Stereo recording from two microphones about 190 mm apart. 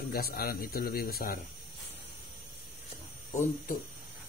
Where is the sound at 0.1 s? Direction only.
55° left (ahead or behind).